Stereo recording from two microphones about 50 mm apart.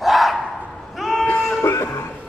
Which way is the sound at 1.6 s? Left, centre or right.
Left.